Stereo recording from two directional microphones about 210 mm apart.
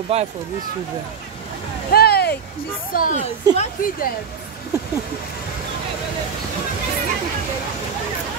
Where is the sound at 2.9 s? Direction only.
40° left (ahead or behind).